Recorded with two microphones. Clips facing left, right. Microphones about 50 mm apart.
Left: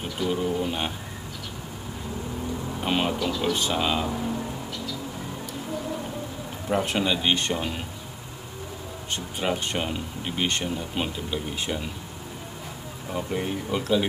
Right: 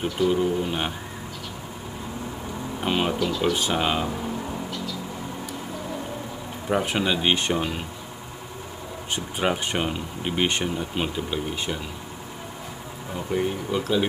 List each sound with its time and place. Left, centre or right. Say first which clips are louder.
0.3 s speech: right 3 dB; centre
2.8 s speech: right 2 dB; centre
3.7 s speech: right 1 dB; centre
6.7 s speech: right 1 dB; centre
9.1 s speech: right 3 dB; centre
11.0 s speech: right 2 dB; centre
13.3 s speech: right 4 dB; centre